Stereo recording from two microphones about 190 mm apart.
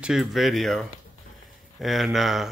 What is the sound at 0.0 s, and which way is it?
Speech, centre (ahead or behind).